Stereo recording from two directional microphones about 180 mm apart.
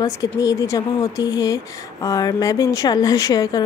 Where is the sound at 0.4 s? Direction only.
20° left (ahead or behind).